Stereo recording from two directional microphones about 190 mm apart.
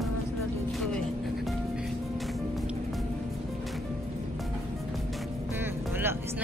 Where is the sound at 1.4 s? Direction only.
Centre (ahead or behind).